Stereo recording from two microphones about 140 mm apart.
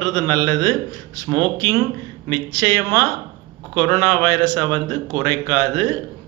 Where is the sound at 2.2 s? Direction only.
20° left (ahead or behind).